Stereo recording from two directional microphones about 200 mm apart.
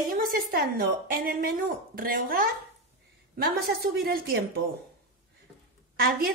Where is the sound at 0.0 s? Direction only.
45° right (ahead or behind).